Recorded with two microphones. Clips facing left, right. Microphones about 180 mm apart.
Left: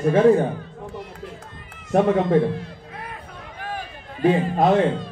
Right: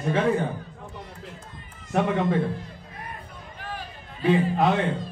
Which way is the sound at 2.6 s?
75° left (ahead or behind).